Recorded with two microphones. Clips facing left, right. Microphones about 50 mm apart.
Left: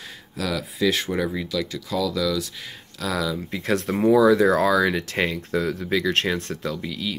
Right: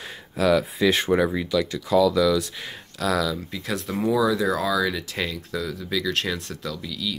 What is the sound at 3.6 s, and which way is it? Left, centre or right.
Speech, left.